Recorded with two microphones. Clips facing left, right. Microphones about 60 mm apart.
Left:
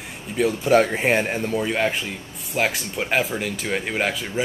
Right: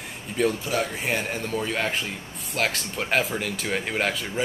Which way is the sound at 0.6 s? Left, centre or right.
Left.